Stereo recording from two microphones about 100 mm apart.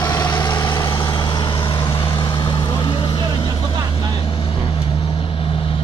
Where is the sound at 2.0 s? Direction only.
60° left (ahead or behind).